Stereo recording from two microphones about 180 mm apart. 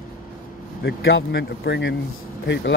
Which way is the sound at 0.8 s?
90° left.